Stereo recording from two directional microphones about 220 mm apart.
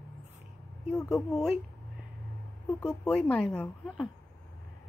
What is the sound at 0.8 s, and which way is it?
Speech, 5° left (ahead or behind).